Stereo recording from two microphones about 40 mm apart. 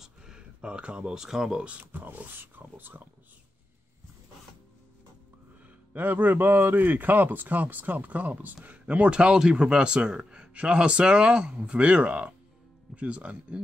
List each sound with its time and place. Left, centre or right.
0.0 s speech: centre
1.9 s speech: right
5.9 s speech: right
8.6 s speech: right